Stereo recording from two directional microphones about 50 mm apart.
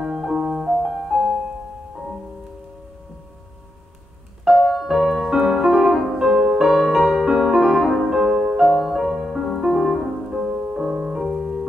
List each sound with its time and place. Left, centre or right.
0.0 s music: centre
4.6 s music: centre
6.7 s music: centre
8.0 s music: centre
10.3 s music: centre